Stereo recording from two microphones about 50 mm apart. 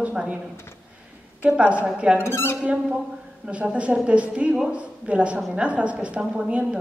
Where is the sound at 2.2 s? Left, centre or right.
Left.